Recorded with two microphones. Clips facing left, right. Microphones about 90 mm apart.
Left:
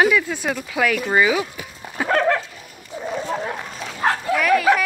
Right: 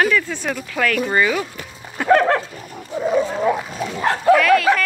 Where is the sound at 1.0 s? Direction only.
5° left (ahead or behind).